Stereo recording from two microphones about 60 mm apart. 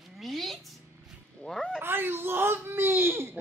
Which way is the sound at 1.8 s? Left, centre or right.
Right.